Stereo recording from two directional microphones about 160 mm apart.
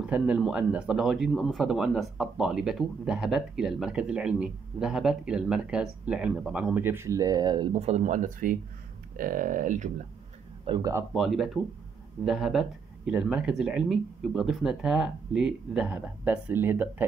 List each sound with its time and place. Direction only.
0.0 s speech: 5° right (ahead or behind); by 10.0 s 50° right (ahead or behind)
10.6 s speech: 25° right (ahead or behind)
11.1 s speech: centre (ahead or behind)